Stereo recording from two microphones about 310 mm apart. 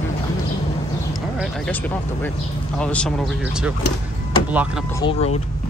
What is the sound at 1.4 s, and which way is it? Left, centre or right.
Speech, centre.